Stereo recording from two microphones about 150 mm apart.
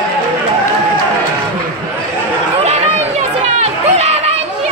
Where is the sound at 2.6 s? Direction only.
45° right (ahead or behind).